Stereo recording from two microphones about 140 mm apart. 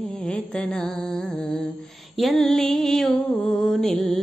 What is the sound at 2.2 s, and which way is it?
Music, centre (ahead or behind).